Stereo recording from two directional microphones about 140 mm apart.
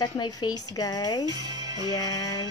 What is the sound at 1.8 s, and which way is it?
Music, 25° left (ahead or behind).